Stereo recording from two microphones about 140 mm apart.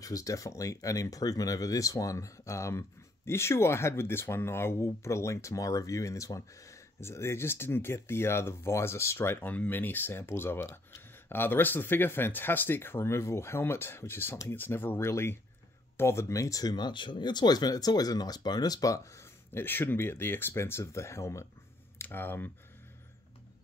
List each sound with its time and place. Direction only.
0.0 s speech: 25° left (ahead or behind)